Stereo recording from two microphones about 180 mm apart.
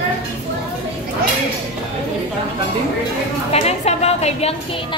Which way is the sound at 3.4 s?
35° left (ahead or behind).